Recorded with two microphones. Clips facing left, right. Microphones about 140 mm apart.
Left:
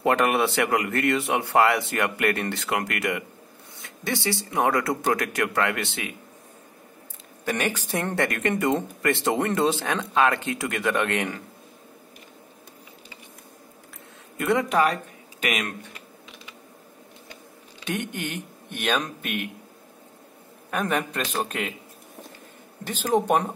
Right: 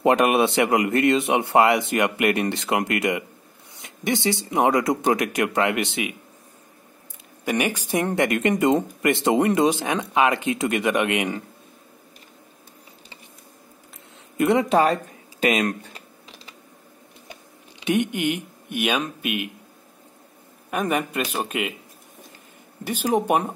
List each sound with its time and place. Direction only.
0.0 s a man's voice: 20° right (ahead or behind)
7.4 s speech: 15° right (ahead or behind)
14.3 s speech: 20° right (ahead or behind)
15.4 s typing: 30° right (ahead or behind)
17.3 s speech: 20° right (ahead or behind)
20.7 s speech: 10° right (ahead or behind)
22.8 s speech: 10° right (ahead or behind)